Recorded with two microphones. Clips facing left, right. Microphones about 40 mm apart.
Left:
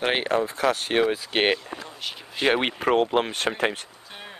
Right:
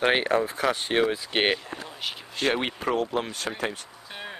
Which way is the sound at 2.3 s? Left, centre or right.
Centre.